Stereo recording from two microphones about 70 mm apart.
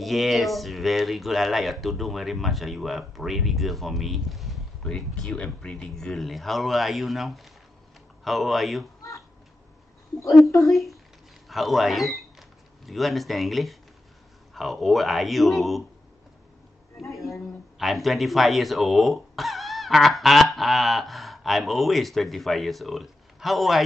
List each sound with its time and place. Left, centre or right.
0.0 s speech: centre
4.8 s speech: centre
10.5 s speech: left
11.4 s speech: centre
17.0 s speech: centre